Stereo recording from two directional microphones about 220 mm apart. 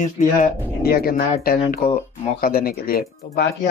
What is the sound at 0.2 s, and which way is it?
Speech, 40° left (ahead or behind).